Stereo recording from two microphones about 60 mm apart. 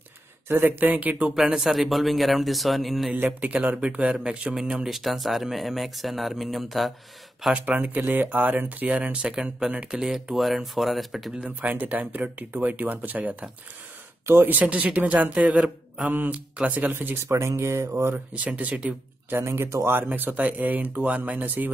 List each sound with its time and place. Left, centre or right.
0.5 s speech: right
1.3 s a man's voice: centre
3.2 s a man's voice: right; by 6.9 s centre
7.5 s a man's voice: right; by 11.3 s centre
11.4 s speech: right
16.9 s speech: right
17.3 s speech: right
18.1 s speech: right
19.4 s speech: right